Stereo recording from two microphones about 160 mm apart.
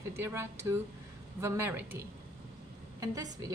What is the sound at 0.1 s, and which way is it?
A woman's voice, 15° right (ahead or behind).